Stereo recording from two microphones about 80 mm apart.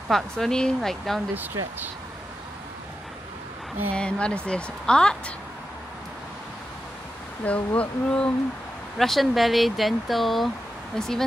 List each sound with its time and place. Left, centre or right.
0.1 s speech: centre
1.3 s speech: right
3.9 s a woman's voice: centre
7.4 s a woman's voice: centre
8.9 s speech: centre